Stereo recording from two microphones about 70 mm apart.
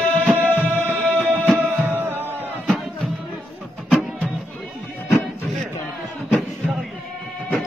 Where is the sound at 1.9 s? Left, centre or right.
Right.